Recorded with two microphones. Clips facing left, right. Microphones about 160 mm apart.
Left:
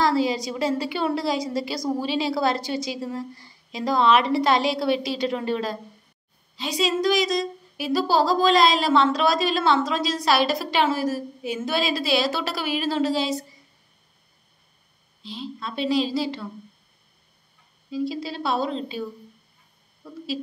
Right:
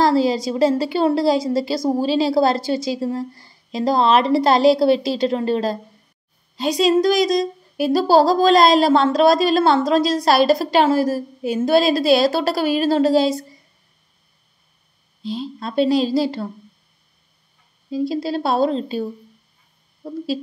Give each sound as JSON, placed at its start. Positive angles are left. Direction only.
{"t": 0.0, "sound": "a woman's voice", "side_deg": -35}
{"t": 6.8, "sound": "a woman's voice", "side_deg": -40}
{"t": 15.2, "sound": "a woman's voice", "side_deg": -40}
{"t": 17.9, "sound": "a woman's voice", "side_deg": -40}